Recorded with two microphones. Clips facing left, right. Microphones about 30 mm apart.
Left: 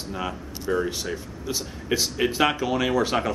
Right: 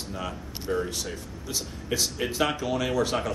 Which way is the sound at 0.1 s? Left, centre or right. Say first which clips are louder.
Left 5 dB; centre.